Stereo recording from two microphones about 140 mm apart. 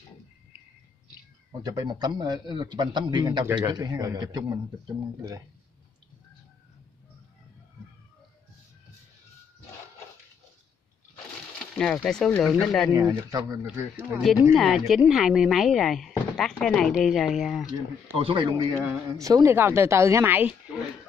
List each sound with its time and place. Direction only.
1.6 s a man's voice: 25° right (ahead or behind)
11.7 s speech: 5° left (ahead or behind)
13.1 s a woman's voice: 20° right (ahead or behind)
14.5 s speech: centre (ahead or behind)
18.1 s a man's voice: 40° right (ahead or behind)
18.9 s a woman's voice: 25° right (ahead or behind)